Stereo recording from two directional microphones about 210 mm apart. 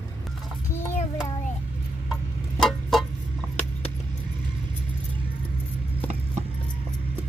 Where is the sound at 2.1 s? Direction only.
Centre (ahead or behind).